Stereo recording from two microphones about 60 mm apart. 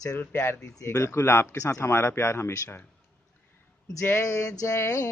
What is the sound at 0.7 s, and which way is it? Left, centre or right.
Speech, left.